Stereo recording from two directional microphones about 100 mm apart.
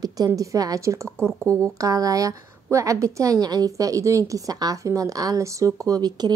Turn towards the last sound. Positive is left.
turn(degrees=-45)  # may be behind; listen again after turning